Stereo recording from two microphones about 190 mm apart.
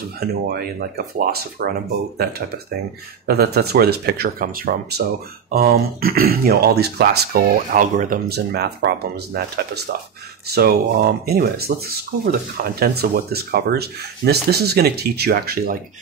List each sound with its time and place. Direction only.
0.2 s speech: 55° right (ahead or behind)